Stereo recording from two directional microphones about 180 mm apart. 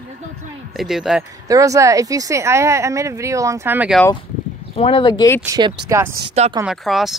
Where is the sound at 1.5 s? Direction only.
20° right (ahead or behind).